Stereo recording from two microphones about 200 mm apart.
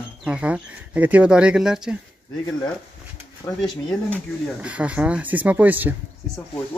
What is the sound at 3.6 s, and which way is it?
Speech, centre (ahead or behind).